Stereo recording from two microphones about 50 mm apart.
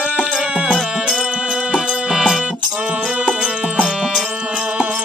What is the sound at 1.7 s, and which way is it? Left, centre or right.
Music, centre.